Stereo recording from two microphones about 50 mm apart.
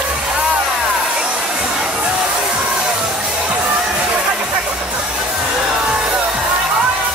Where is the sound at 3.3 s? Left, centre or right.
Right.